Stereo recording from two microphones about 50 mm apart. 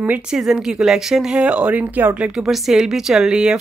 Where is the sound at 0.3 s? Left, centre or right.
Centre.